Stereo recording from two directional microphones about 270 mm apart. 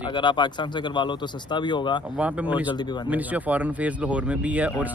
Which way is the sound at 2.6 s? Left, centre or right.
Centre.